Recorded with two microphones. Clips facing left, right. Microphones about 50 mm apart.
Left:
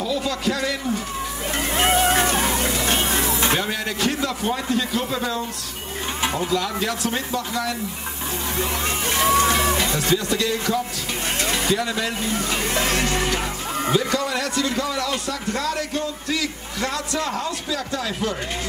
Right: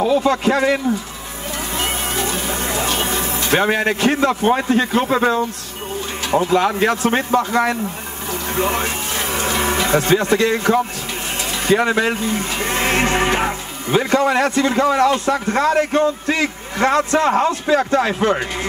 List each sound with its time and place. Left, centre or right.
0.0 s a man's voice: right
1.8 s music: left
2.5 s music: right
3.0 s vehicle: right
3.5 s a man's voice: right